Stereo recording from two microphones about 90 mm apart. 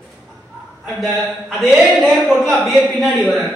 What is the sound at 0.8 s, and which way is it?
A man's voice, 5° left (ahead or behind).